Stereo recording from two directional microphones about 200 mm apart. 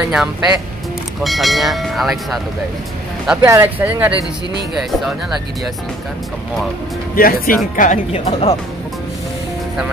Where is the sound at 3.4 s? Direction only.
10° right (ahead or behind).